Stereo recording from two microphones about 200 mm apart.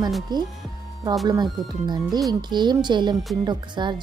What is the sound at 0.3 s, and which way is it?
A woman's voice, 20° right (ahead or behind).